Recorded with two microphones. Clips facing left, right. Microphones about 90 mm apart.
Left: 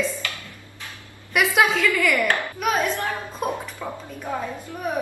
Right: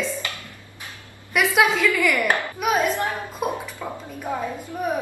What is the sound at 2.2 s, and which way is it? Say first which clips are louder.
A woman's voice: even; 15° right (ahead or behind).